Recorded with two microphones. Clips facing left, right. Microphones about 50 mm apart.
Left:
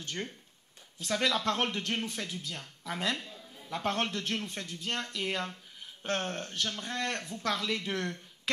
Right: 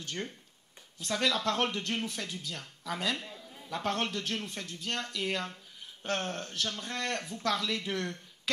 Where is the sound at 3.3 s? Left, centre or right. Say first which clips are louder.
Right 1 dB; centre.